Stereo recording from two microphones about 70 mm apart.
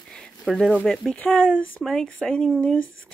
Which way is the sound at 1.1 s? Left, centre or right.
Centre.